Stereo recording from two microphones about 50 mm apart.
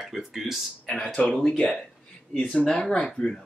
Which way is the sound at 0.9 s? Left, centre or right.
Centre.